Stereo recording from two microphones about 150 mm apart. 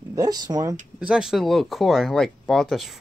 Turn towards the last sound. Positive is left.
turn(degrees=0)  # may be behind; listen again after turning